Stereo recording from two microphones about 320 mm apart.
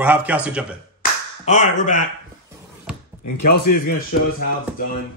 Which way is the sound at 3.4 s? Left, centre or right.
Left.